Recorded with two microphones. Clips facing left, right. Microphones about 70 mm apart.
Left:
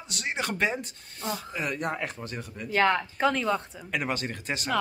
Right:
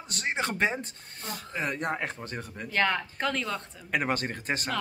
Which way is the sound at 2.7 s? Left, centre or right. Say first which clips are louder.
Left 4 dB; centre.